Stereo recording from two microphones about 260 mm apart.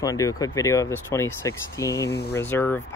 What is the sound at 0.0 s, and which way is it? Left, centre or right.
Speech, centre.